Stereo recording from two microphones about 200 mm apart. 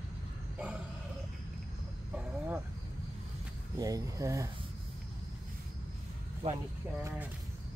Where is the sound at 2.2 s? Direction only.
10° right (ahead or behind).